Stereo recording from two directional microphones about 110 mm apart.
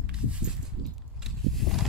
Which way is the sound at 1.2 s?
Centre (ahead or behind).